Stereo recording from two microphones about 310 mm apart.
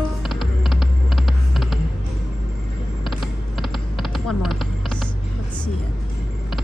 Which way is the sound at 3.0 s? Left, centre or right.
Centre.